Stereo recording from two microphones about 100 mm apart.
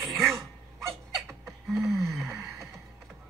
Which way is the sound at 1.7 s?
Centre (ahead or behind).